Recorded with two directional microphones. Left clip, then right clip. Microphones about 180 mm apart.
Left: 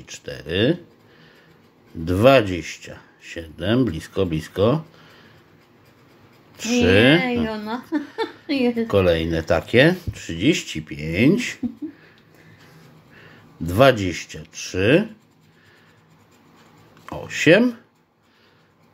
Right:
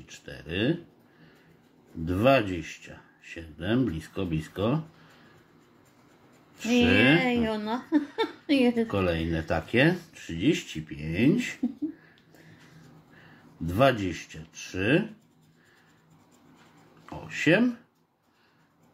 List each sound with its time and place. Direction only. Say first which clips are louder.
0.0 s speech: left 10 dB; 35° left (ahead or behind)
2.0 s speech: left 8 dB; 30° left (ahead or behind)
6.6 s speech: left 6 dB; 30° left (ahead or behind)
7.4 s a woman's voice: left 3 dB; 15° right (ahead or behind)
8.8 s speech: left 10 dB; 30° left (ahead or behind)
13.7 s speech: left 8 dB; 35° left (ahead or behind)
17.0 s speech: left 8 dB; 35° left (ahead or behind)